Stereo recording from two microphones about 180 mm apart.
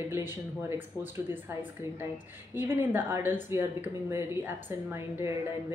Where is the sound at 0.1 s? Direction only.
10° right (ahead or behind).